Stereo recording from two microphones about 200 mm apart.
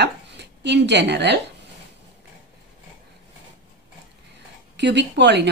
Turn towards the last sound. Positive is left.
turn(degrees=-60)  # may be behind; listen again after turning